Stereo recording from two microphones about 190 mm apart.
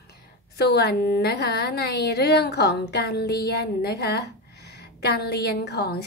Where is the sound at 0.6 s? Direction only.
60° left (ahead or behind).